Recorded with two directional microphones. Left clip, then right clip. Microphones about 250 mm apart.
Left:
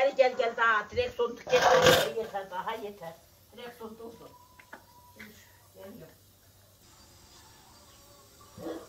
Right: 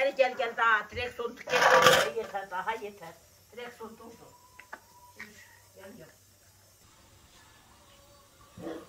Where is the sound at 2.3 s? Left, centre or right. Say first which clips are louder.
Right 1 dB; centre.